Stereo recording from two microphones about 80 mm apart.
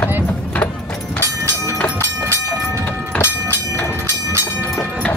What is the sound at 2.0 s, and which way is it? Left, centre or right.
Train, right.